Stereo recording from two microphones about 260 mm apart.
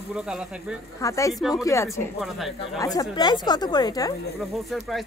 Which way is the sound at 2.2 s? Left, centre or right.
Centre.